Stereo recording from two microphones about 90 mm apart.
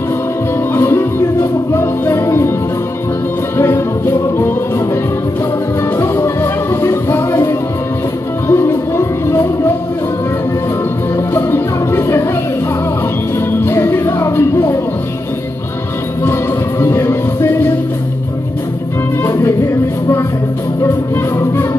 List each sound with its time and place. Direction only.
0.7 s music: 30° left (ahead or behind)
3.5 s music: 30° left (ahead or behind)
5.9 s music: 35° left (ahead or behind)
8.5 s music: 25° left (ahead or behind)
11.1 s music: 30° left (ahead or behind)
13.5 s music: 25° left (ahead or behind)
16.8 s music: 30° left (ahead or behind)
19.2 s music: 25° left (ahead or behind)